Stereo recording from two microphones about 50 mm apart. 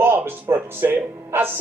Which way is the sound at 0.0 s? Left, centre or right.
Right.